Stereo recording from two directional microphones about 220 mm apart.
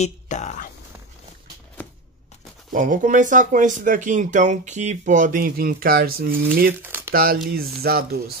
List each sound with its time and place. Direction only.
0.0 s speech: 30° left (ahead or behind)
2.7 s speech: 35° right (ahead or behind)
6.8 s crumpling: 10° right (ahead or behind)
7.1 s speech: 45° right (ahead or behind)